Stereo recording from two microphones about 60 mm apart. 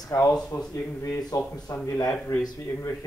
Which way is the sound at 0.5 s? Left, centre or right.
Left.